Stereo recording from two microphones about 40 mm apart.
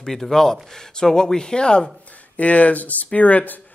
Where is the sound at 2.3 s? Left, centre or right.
Left.